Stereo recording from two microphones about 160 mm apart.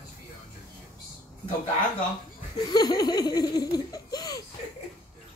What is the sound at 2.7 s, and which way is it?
Laughter, 25° left (ahead or behind).